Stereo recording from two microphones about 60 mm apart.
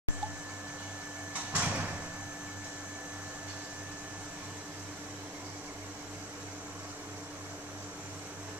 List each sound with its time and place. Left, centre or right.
1.3 s sliding door: right